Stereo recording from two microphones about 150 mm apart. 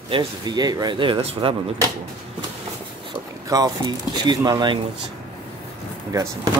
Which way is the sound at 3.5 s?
25° right (ahead or behind).